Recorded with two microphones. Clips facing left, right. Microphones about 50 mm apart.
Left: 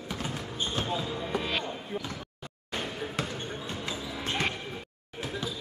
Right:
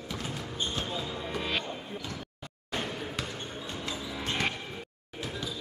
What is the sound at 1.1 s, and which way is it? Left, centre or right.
Music, centre.